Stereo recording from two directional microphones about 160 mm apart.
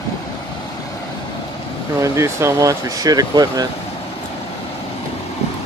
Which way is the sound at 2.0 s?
15° right (ahead or behind).